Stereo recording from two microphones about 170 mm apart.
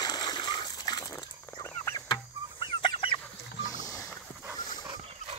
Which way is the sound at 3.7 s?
20° left (ahead or behind).